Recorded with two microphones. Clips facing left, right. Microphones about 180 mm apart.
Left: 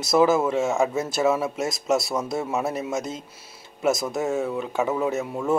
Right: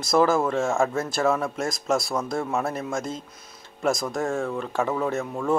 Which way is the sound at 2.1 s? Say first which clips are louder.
Even; 20° left (ahead or behind).